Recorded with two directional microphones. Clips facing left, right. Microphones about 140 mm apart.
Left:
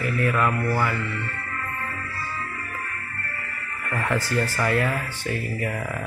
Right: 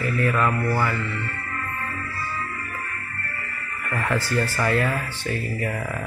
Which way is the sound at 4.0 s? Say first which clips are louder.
Right 1 dB; 15° left (ahead or behind).